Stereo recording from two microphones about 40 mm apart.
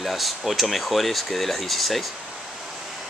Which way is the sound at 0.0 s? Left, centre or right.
Centre.